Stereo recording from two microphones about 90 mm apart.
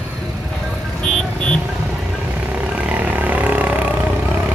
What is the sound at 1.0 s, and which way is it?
Vehicle, 10° left (ahead or behind).